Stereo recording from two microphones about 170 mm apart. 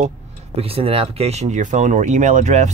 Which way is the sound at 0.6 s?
35° right (ahead or behind).